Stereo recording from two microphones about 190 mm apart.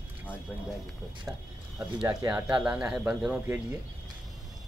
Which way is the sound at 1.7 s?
20° right (ahead or behind).